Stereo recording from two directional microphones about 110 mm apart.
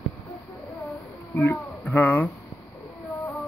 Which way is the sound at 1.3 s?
15° left (ahead or behind).